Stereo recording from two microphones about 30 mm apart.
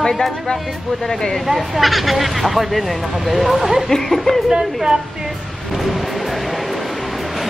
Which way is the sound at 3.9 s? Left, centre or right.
Centre.